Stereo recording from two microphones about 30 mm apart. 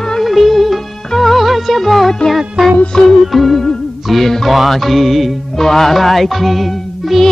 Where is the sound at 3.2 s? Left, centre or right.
Centre.